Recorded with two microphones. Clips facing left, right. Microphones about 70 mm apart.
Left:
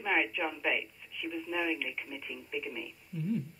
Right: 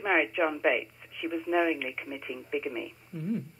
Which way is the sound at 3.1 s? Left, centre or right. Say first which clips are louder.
Left 1 dB; right.